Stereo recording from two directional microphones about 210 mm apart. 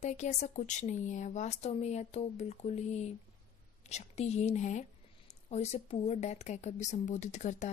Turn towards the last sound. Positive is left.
turn(degrees=35)  # may be behind; listen again after turning